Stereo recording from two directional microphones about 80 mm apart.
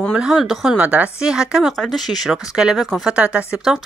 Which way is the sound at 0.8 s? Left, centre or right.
Centre.